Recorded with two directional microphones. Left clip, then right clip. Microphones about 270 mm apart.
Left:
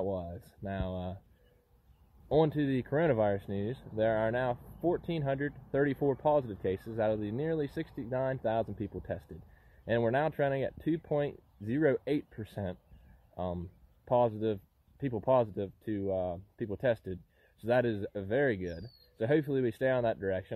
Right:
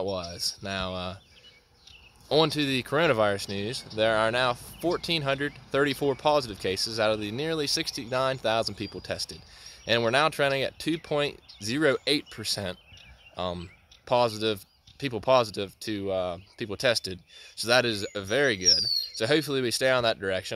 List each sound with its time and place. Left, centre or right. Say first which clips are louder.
0.0 s speech: right 4 dB; right
0.3 s speech: right 9 dB; centre
2.3 s speech: right 5 dB; centre